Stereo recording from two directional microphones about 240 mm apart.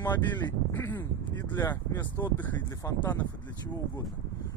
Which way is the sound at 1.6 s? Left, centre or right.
Centre.